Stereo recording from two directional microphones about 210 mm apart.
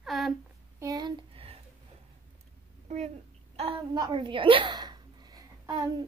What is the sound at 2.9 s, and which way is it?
A child's voice, 30° right (ahead or behind).